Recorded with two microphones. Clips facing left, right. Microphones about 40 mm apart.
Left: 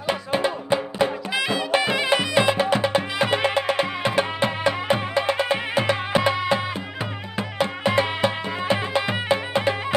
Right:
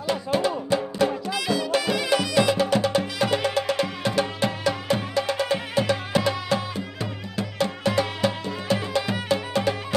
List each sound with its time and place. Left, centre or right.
0.0 s music: left